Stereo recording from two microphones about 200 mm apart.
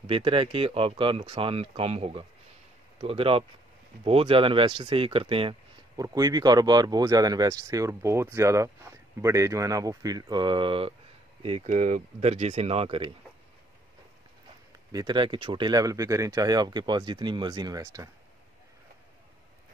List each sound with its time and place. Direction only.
0.0 s speech: 25° right (ahead or behind)
14.9 s speech: 20° right (ahead or behind)